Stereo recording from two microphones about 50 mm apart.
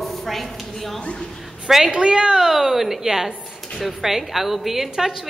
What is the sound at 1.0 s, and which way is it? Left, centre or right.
Speech, left.